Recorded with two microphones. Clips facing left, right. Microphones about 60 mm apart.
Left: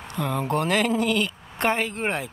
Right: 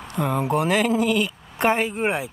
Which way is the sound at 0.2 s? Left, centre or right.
Centre.